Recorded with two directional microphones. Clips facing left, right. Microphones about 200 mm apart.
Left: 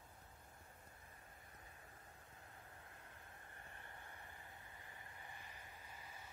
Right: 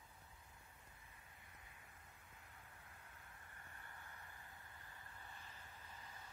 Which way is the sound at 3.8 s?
20° left (ahead or behind).